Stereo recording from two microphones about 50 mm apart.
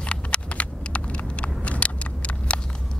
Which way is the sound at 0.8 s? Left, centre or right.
Left.